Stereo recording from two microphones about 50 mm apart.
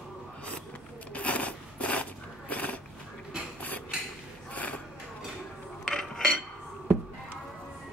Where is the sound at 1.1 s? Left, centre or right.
Left.